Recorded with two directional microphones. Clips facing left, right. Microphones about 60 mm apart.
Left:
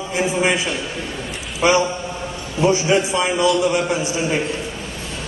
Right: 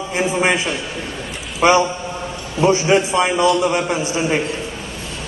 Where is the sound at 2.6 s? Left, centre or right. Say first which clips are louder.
Right 2 dB; right.